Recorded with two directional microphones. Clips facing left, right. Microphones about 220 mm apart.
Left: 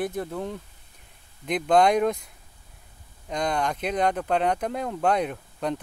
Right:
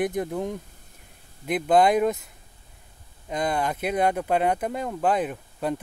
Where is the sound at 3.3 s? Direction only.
5° right (ahead or behind).